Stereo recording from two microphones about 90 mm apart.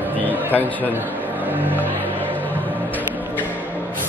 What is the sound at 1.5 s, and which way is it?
Music, 20° right (ahead or behind).